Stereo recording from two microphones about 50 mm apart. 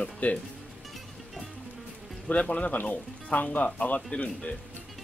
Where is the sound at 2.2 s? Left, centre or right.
Left.